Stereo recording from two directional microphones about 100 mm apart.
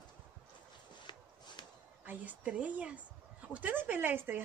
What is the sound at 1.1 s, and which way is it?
Walk, 50° left (ahead or behind).